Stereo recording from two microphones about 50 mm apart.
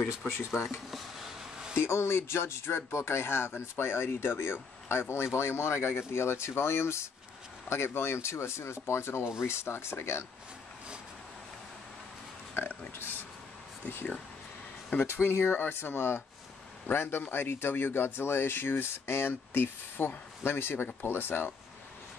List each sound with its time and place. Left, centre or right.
0.2 s speech: left
0.7 s a sound: centre
1.9 s speech: left
12.5 s pig: left
13.8 s speech: left